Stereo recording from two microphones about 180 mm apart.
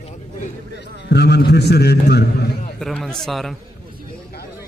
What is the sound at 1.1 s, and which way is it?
A man's voice, 65° left (ahead or behind).